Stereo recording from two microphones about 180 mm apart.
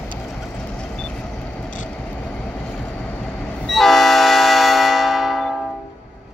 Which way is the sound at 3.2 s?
Centre (ahead or behind).